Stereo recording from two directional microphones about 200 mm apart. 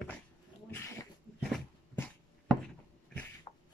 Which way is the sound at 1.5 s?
5° left (ahead or behind).